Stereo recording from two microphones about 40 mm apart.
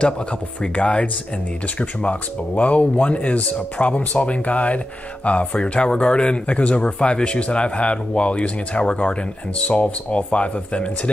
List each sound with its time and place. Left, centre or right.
0.6 s speech: left